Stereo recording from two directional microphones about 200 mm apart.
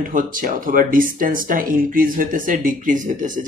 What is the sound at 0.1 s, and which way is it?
Speech, 45° right (ahead or behind).